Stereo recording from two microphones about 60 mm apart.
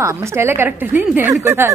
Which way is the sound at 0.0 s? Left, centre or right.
Right.